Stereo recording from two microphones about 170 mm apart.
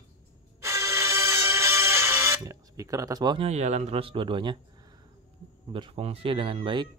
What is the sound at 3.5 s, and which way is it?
Speech, 40° right (ahead or behind).